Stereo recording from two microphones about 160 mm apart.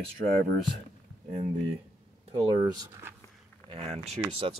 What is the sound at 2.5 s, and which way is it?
Speech, 25° right (ahead or behind).